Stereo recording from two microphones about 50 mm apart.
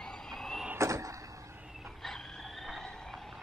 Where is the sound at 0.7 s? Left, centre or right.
Right.